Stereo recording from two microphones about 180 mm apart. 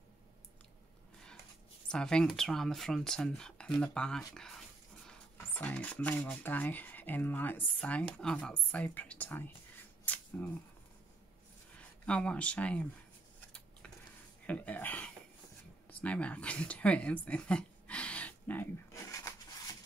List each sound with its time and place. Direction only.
1.9 s speech: 5° left (ahead or behind)
12.1 s speech: 5° left (ahead or behind)
14.4 s speech: 10° left (ahead or behind)
19.1 s rub: 20° left (ahead or behind)